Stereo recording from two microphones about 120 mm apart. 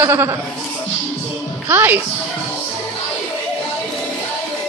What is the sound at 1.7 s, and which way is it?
Speech, 20° right (ahead or behind).